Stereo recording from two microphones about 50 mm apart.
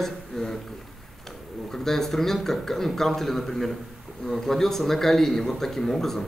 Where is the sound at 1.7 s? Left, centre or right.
Centre.